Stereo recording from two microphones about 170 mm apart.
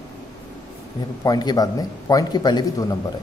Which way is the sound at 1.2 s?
25° left (ahead or behind).